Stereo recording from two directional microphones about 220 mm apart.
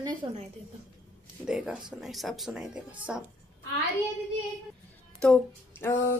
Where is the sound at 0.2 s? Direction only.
20° right (ahead or behind).